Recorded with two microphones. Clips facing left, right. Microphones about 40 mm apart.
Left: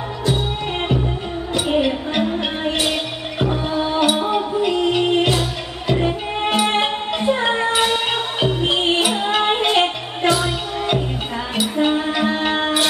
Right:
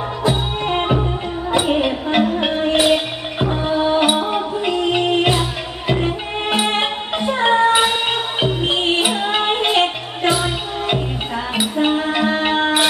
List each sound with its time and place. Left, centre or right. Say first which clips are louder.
0.2 s music: right 2 dB; centre
6.8 s music: even; centre
7.7 s music: right 2 dB; centre